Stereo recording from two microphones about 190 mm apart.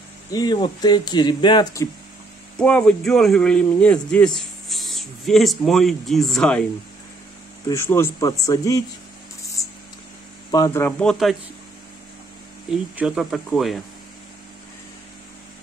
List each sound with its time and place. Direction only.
0.3 s speech: 20° left (ahead or behind)
2.6 s speech: 5° left (ahead or behind)
7.6 s speech: 15° left (ahead or behind)
9.6 s a sound: 15° left (ahead or behind)
10.5 s speech: 15° left (ahead or behind)
12.9 s speech: 5° right (ahead or behind)